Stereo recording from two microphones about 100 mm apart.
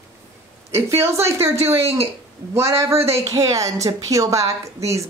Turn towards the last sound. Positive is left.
turn(degrees=-30)  # may be behind; listen again after turning